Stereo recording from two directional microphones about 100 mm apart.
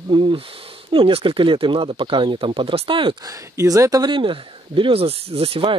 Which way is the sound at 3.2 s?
30° right (ahead or behind).